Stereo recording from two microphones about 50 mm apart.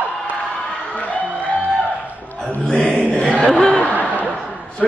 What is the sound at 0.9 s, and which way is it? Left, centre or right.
Music, left.